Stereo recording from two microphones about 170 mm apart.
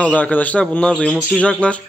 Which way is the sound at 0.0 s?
10° left (ahead or behind).